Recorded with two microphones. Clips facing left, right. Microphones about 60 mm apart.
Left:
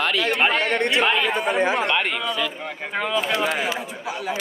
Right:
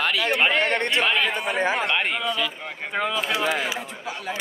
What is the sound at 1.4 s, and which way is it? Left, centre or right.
Speech, centre.